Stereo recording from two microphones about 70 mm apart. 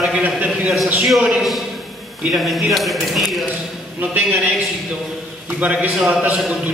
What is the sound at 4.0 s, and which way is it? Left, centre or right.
A man's voice, right.